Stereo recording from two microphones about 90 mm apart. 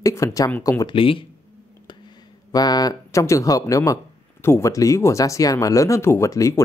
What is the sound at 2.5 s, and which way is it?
Speech, 45° left (ahead or behind).